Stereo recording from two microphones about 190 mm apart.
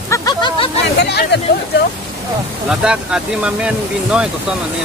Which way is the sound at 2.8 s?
5° right (ahead or behind).